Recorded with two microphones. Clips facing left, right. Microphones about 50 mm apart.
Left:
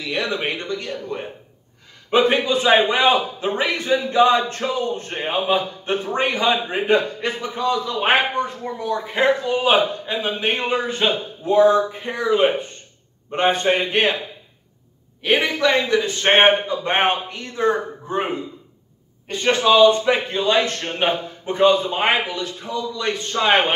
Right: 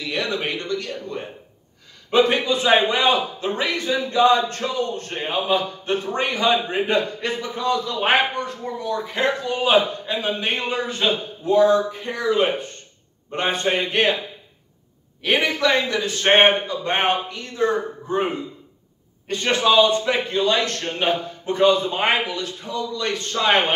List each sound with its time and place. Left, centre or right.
0.1 s a man's voice: left
0.4 s a man's voice: centre
7.8 s a man's voice: centre
15.2 s a man's voice: centre
17.0 s a man's voice: left
19.2 s a man's voice: centre